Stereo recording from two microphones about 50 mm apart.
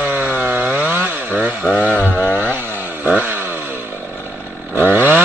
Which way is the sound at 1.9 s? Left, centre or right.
Left.